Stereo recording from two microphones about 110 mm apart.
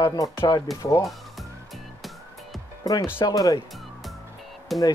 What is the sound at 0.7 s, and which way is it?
Speech, centre (ahead or behind).